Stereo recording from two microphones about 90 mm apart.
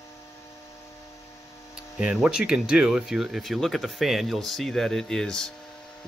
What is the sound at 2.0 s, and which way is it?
Speech, 10° right (ahead or behind).